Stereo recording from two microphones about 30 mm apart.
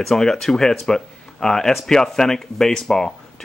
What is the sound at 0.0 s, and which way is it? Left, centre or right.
Speech, centre.